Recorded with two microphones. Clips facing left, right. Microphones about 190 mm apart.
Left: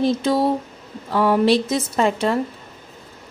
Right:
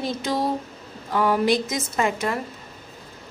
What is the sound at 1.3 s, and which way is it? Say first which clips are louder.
A woman's voice: left 7 dB; 30° left (ahead or behind).